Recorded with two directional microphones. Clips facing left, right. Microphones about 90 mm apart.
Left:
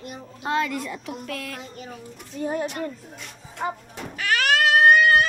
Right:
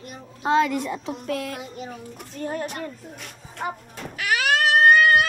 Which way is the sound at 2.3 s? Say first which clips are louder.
Left 2 dB; 10° left (ahead or behind).